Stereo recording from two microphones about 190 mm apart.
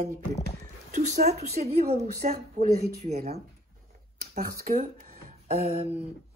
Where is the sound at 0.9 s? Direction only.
40° right (ahead or behind).